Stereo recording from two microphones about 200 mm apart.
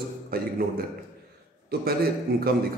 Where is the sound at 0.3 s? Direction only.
50° right (ahead or behind).